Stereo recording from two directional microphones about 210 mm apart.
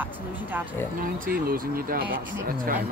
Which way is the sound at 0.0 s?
10° right (ahead or behind).